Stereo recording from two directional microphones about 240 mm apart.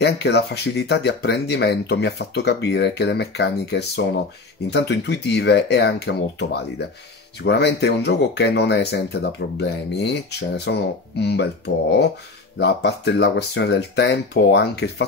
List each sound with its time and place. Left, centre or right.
0.0 s speech: left